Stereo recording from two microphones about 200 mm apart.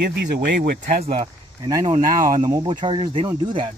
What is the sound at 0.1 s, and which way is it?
Speech, 55° right (ahead or behind).